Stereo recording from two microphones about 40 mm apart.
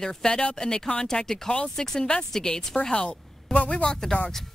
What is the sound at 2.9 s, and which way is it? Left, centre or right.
A woman's voice, left.